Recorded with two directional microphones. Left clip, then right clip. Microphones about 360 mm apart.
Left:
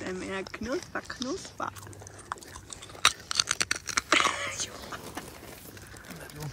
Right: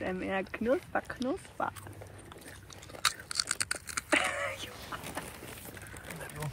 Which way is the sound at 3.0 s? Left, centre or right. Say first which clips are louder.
Left 6 dB; centre.